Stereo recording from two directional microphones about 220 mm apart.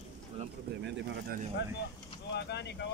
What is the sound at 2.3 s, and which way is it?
Speech, 50° left (ahead or behind).